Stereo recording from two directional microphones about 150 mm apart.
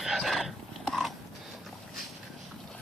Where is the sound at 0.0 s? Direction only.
Centre (ahead or behind).